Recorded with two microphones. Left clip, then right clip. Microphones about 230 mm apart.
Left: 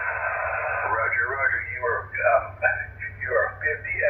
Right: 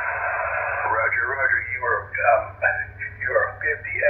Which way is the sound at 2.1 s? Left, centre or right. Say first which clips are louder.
Right 2 dB; centre.